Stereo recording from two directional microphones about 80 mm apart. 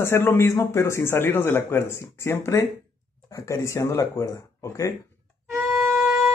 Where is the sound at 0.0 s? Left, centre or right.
Left.